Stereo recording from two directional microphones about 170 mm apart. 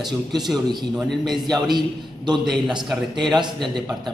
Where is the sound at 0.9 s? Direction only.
Centre (ahead or behind).